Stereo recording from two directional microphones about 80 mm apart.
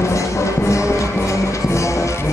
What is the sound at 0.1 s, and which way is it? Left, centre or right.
Music, left.